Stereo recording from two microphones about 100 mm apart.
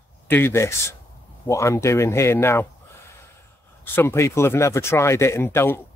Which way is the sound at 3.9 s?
25° left (ahead or behind).